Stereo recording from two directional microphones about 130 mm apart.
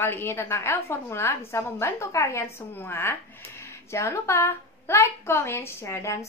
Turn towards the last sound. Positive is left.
turn(degrees=20)  # may be behind; listen again after turning